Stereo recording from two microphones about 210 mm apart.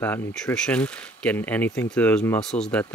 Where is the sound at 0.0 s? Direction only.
10° left (ahead or behind).